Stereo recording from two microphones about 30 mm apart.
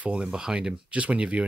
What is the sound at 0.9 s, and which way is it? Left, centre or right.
Speech, right.